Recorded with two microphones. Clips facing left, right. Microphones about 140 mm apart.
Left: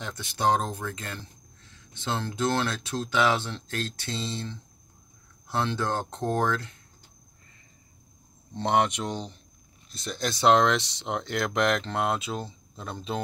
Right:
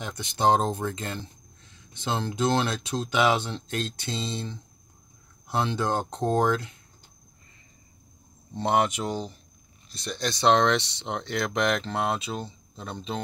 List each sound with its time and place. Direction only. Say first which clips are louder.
0.0 s speech: right 2 dB; 15° right (ahead or behind)
8.5 s speech: even; 5° right (ahead or behind)